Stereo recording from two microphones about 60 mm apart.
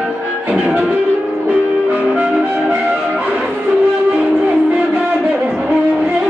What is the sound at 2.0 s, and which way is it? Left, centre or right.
Brass instrument, right.